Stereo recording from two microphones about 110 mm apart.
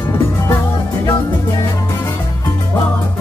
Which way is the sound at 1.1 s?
25° left (ahead or behind).